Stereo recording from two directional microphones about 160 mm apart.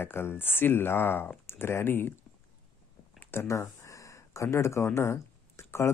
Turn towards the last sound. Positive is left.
turn(degrees=15)  # may be behind; listen again after turning